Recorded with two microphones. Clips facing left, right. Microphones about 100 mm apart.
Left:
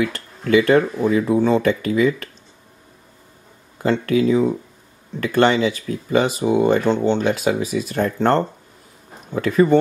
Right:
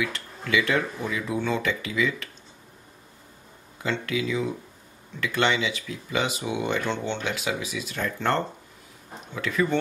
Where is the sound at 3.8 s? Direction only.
45° left (ahead or behind).